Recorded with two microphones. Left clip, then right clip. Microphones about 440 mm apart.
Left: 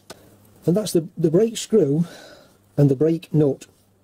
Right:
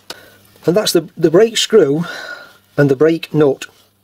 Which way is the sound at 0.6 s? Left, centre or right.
Centre.